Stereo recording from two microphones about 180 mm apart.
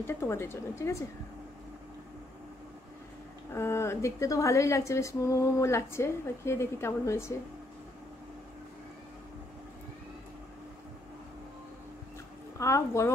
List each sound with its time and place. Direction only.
0.0 s a woman's voice: 15° left (ahead or behind)
3.5 s a woman's voice: 15° left (ahead or behind)
12.5 s a woman's voice: 15° left (ahead or behind)